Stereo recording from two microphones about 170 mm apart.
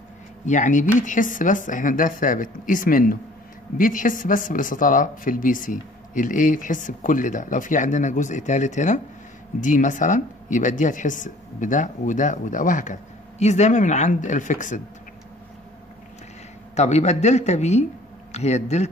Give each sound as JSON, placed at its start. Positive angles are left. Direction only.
{"t": 0.5, "sound": "speech", "side_deg": 50}
{"t": 16.7, "sound": "speech", "side_deg": 40}